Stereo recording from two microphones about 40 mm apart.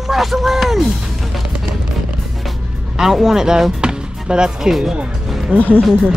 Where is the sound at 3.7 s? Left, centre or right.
Centre.